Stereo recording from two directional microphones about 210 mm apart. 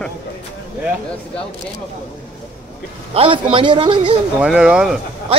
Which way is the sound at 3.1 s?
25° right (ahead or behind).